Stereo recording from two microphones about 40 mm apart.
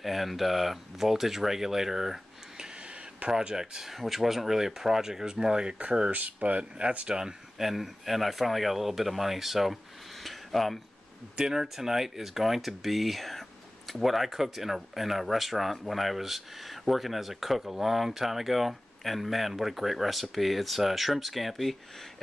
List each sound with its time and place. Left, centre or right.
0.0 s speech: centre
3.9 s speech: centre; by 6.1 s right
6.1 s speech: right; by 7.6 s centre
7.6 s speech: centre
10.2 s a sound: centre
11.3 s speech: centre